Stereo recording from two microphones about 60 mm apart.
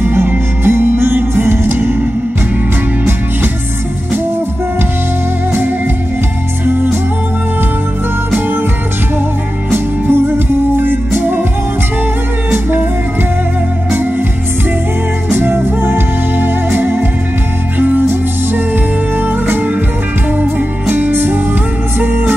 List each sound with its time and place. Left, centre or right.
0.0 s music: right
10.8 s music: right
15.3 s music: right
19.1 s music: right
20.9 s music: right